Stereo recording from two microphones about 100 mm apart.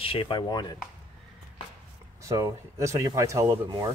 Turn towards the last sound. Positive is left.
turn(degrees=-40)  # may be behind; listen again after turning